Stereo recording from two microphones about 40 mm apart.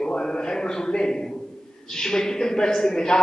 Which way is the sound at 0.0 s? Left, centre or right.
Left.